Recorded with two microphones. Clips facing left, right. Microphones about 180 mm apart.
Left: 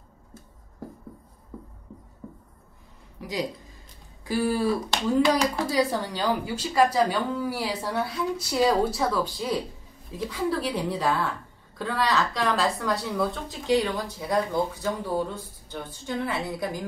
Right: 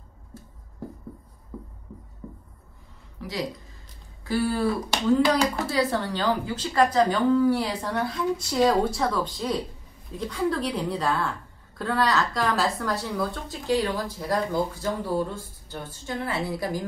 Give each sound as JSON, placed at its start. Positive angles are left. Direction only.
{"t": 3.2, "sound": "a sound", "side_deg": 15}
{"t": 4.2, "sound": "speech", "side_deg": 15}
{"t": 5.7, "sound": "speech", "side_deg": 10}